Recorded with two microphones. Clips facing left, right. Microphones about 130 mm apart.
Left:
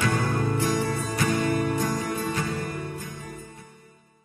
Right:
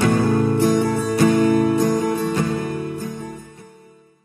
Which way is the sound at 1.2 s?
50° right (ahead or behind).